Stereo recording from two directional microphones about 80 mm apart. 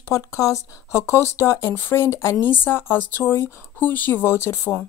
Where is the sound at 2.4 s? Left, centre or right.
Left.